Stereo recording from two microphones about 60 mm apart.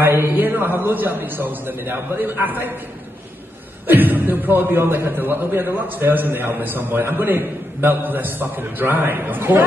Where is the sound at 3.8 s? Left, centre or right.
Right.